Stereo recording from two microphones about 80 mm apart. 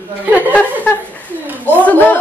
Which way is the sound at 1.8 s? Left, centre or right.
Centre.